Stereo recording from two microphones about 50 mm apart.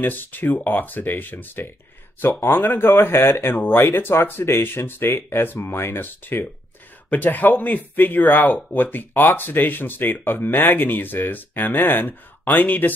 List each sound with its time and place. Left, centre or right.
0.0 s speech: left